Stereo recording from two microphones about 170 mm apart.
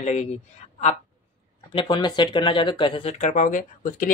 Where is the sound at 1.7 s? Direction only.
25° left (ahead or behind).